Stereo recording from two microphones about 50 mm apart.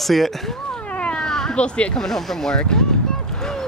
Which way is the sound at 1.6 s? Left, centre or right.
Left.